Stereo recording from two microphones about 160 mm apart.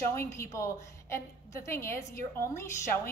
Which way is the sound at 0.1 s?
15° left (ahead or behind).